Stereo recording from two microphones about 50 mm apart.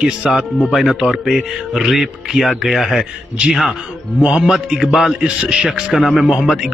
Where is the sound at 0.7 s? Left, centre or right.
Centre.